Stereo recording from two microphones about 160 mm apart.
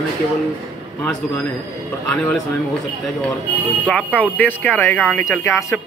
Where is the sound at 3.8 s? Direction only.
10° left (ahead or behind).